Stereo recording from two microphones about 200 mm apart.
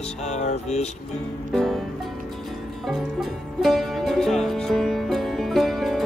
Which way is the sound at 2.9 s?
Centre (ahead or behind).